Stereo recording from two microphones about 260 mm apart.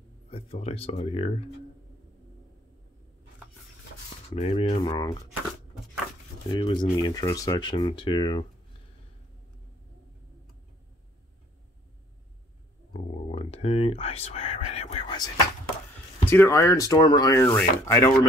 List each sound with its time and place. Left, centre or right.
0.3 s speech: left
4.4 s speech: left
6.5 s speech: centre
12.9 s whispering: left
16.3 s speech: centre